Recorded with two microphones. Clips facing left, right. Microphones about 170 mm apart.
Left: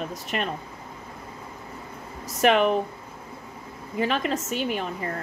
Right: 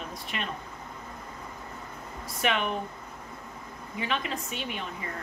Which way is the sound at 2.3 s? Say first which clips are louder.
Left 9 dB; 45° left (ahead or behind).